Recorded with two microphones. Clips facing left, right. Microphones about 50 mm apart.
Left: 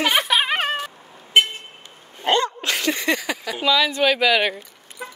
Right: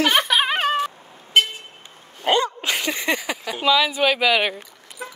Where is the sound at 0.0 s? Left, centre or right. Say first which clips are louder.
Right 1 dB; centre.